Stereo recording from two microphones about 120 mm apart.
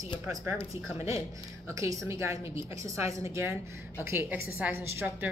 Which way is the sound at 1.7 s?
25° right (ahead or behind).